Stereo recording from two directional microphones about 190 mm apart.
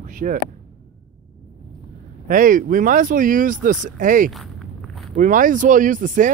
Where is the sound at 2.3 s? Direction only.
45° right (ahead or behind).